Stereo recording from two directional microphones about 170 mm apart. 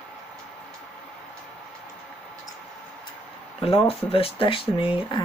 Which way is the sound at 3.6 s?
35° left (ahead or behind).